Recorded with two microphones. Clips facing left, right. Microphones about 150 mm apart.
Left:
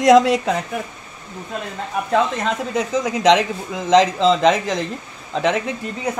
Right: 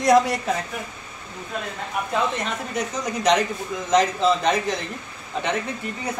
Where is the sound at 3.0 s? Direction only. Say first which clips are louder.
Left 4 dB; 90° left.